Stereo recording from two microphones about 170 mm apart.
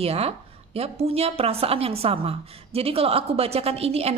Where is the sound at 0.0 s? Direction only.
35° right (ahead or behind).